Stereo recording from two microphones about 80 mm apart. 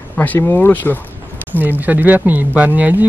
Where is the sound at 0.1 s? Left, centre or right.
Centre.